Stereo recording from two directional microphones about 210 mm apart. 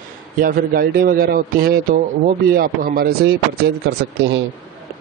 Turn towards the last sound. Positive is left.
turn(degrees=-50)  # may be behind; listen again after turning